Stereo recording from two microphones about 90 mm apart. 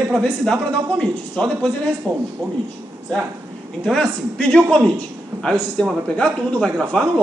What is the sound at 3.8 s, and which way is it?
Speech, 10° left (ahead or behind).